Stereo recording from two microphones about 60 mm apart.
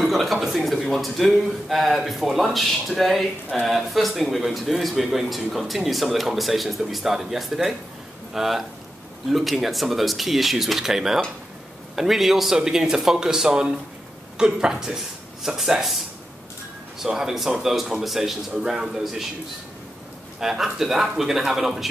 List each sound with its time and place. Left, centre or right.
0.0 s a man's voice: centre
17.0 s speech: centre
20.3 s speech: centre